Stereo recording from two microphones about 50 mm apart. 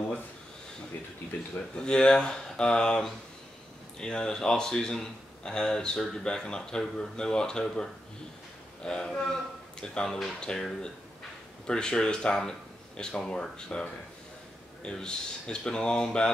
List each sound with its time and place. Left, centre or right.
1.8 s speech: centre
8.8 s a man's voice: centre